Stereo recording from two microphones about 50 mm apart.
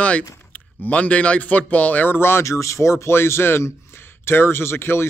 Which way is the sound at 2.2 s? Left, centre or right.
Left.